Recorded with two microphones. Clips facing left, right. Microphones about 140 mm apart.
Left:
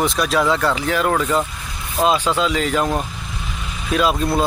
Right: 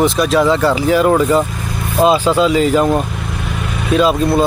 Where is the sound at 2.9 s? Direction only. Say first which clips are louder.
Right 6 dB; 60° right (ahead or behind).